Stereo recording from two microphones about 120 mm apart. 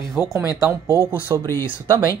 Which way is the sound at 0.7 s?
25° right (ahead or behind).